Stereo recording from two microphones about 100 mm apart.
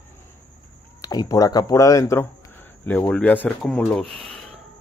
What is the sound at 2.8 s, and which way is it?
Speech, 20° left (ahead or behind).